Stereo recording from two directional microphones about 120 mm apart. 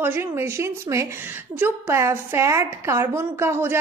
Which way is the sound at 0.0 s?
20° right (ahead or behind).